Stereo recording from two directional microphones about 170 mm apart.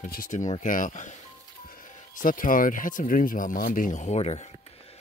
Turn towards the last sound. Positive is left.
turn(degrees=40)  # may be behind; listen again after turning